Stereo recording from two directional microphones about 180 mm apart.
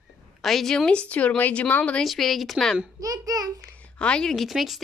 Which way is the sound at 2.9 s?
20° right (ahead or behind).